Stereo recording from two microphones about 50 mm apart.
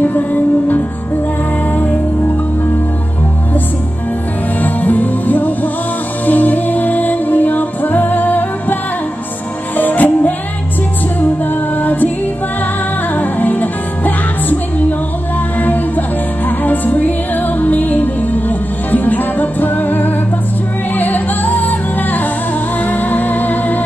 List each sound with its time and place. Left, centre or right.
0.0 s music: left
4.6 s music: left
9.8 s music: left
11.8 s music: left
13.1 s music: left
16.4 s music: left